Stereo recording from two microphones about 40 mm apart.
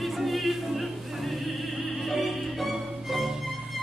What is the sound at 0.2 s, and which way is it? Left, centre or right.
Music, centre.